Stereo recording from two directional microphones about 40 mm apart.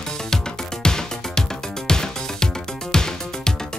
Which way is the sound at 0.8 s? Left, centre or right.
Centre.